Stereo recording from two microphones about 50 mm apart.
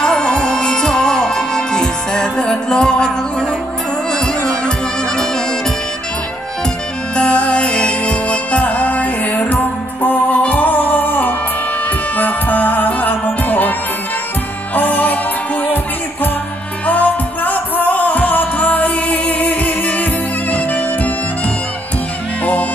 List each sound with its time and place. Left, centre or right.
0.0 s music: centre
7.2 s music: centre; by 13.7 s left
14.8 s music: left
16.8 s music: left